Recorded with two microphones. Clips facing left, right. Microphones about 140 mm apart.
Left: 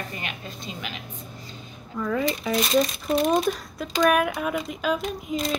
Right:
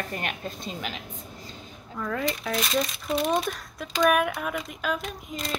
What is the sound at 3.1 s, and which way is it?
Speech, 45° left (ahead or behind).